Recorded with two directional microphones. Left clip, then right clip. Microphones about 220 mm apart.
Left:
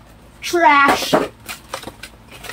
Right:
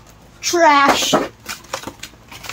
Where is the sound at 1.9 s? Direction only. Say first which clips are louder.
Right 2 dB; 15° right (ahead or behind).